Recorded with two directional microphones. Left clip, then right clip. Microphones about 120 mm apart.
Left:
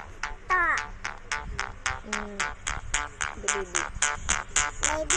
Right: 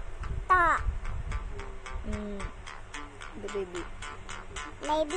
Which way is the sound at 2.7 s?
25° left (ahead or behind).